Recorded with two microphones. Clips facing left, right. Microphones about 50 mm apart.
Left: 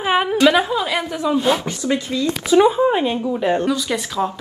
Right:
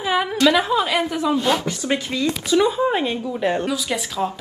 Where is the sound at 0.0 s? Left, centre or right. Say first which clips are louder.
Left 3 dB; left.